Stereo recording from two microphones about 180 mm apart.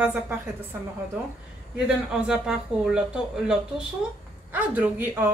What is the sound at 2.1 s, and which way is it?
A woman's voice, 5° right (ahead or behind).